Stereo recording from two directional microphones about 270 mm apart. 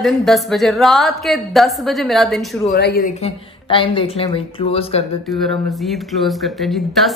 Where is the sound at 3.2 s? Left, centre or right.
Centre.